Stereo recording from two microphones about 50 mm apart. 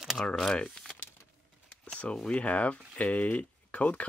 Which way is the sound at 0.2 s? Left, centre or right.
Centre.